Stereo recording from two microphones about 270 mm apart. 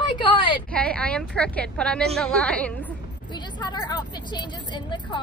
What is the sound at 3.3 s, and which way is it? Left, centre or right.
Speech, centre.